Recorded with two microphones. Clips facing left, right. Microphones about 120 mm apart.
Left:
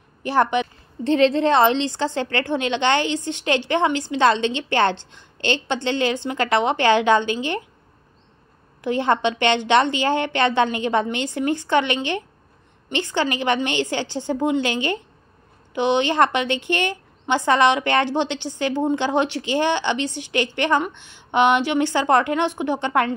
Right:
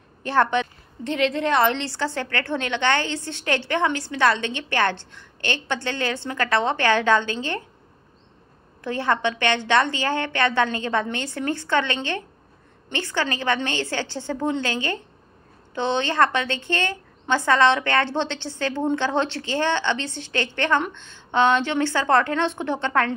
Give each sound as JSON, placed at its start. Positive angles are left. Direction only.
{"t": 0.2, "sound": "a woman's voice", "side_deg": 10}
{"t": 1.0, "sound": "a woman's voice", "side_deg": 30}
{"t": 8.8, "sound": "a woman's voice", "side_deg": 20}